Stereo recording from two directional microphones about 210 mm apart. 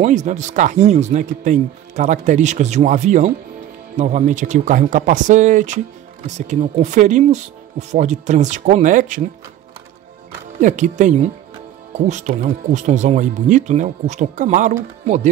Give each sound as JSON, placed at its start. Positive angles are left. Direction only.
{"t": 0.0, "sound": "speech", "side_deg": -35}
{"t": 10.6, "sound": "speech", "side_deg": -35}